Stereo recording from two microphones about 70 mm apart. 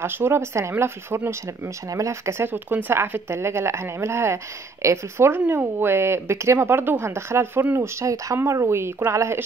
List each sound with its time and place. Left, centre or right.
0.0 s speech: right
1.9 s speech: right
7.8 s speech: right